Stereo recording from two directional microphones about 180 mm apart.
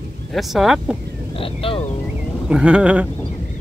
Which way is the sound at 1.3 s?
30° left (ahead or behind).